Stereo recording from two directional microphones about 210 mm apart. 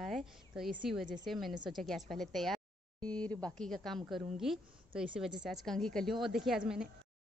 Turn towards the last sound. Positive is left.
turn(degrees=0)  # may be behind; listen again after turning